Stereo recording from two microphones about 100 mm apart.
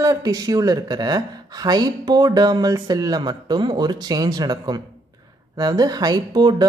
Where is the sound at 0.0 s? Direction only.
40° right (ahead or behind).